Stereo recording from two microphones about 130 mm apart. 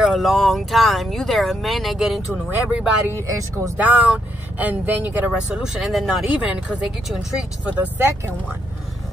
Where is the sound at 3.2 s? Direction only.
25° right (ahead or behind).